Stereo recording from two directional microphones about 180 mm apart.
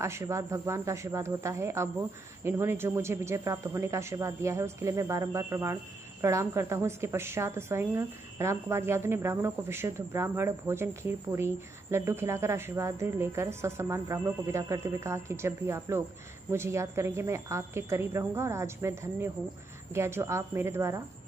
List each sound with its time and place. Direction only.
0.0 s a woman's voice: 15° right (ahead or behind)